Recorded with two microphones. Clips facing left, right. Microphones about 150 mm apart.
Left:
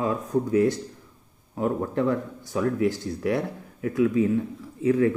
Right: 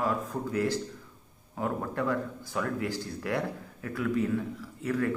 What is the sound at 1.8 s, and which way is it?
Speech, 20° left (ahead or behind).